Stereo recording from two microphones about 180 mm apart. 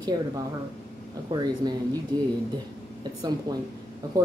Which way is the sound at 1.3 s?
25° right (ahead or behind).